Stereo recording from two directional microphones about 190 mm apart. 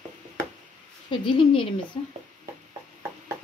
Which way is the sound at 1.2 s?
25° left (ahead or behind).